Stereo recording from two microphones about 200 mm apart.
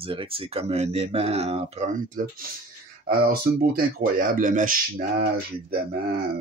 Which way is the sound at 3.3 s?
45° right (ahead or behind).